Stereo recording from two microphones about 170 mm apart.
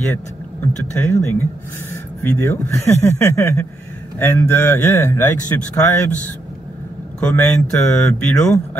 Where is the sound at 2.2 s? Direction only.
15° left (ahead or behind).